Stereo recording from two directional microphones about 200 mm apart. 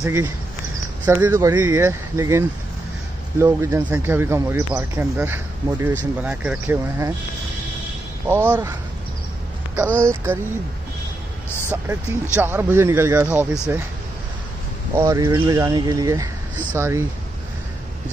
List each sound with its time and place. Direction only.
0.0 s speech: 10° right (ahead or behind)
8.3 s speech: 10° right (ahead or behind)
11.7 s speech: 10° right (ahead or behind)
15.0 s speech: 15° right (ahead or behind)